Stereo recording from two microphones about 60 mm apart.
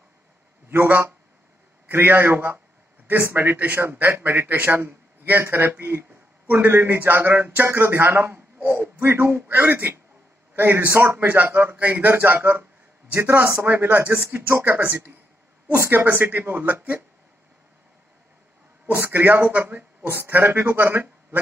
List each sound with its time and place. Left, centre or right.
0.7 s a man's voice: right
13.8 s a man's voice: right
18.9 s a man's voice: right